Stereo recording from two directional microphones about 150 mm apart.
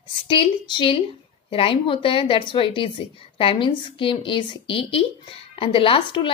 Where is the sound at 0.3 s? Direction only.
35° left (ahead or behind).